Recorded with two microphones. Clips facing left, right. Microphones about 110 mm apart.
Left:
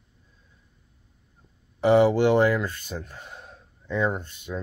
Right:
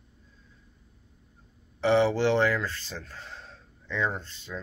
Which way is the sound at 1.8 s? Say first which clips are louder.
Left 4 dB; 15° left (ahead or behind).